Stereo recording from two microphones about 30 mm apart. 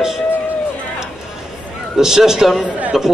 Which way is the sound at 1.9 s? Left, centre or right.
Centre.